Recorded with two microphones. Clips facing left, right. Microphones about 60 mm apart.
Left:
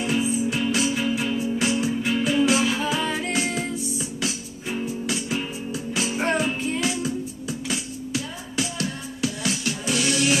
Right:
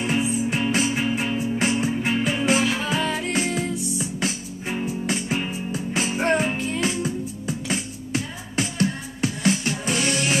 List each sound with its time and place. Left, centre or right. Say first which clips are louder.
0.0 s music: even; right
2.7 s music: even; centre
4.0 s music: right 2 dB; right